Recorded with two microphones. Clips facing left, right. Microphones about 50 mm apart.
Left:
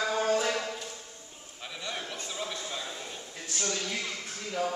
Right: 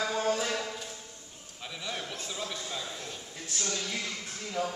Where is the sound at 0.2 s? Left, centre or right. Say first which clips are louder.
Left 2 dB; centre.